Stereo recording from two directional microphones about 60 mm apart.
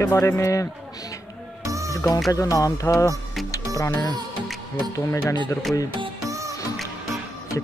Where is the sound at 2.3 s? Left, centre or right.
Left.